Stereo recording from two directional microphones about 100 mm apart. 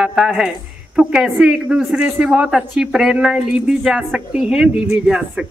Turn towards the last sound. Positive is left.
turn(degrees=-5)  # may be behind; listen again after turning